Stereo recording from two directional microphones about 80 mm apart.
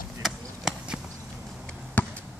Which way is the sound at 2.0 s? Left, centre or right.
Left.